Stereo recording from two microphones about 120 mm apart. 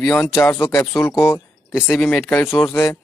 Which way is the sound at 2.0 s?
10° left (ahead or behind).